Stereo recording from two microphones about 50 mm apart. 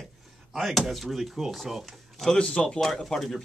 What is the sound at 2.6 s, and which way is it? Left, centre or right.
Speech, centre.